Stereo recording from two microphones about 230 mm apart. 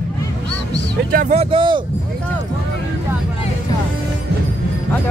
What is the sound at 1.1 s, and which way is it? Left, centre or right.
Speech, right.